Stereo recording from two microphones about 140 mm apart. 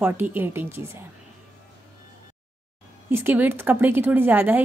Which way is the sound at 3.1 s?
15° right (ahead or behind).